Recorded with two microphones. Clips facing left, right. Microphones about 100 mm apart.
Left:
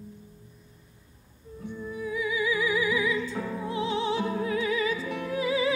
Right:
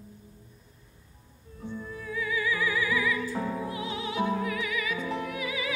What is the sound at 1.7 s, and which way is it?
Music, 15° left (ahead or behind).